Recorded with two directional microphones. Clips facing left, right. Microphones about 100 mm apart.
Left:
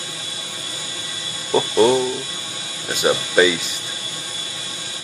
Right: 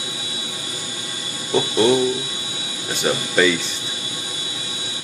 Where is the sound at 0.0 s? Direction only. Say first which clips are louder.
Right 2 dB; 15° right (ahead or behind).